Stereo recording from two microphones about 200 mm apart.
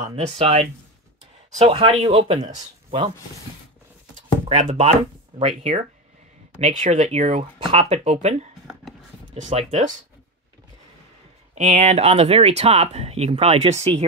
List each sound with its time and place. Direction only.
0.0 s speech: 30° right (ahead or behind)
1.6 s speech: 30° right (ahead or behind)
4.5 s speech: 35° right (ahead or behind)
7.6 s speech: 20° right (ahead or behind)
7.9 s speech: 35° right (ahead or behind)
11.5 s speech: 35° right (ahead or behind)